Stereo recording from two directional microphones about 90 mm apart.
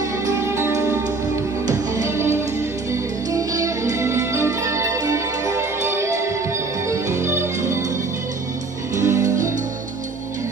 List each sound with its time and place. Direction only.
0.3 s music: 30° right (ahead or behind)
8.9 s music: 35° right (ahead or behind)